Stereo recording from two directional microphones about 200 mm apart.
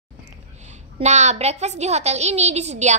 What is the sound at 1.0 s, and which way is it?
A woman's voice, 35° right (ahead or behind).